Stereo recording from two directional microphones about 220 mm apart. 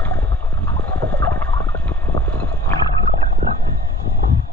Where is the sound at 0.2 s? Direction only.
5° left (ahead or behind).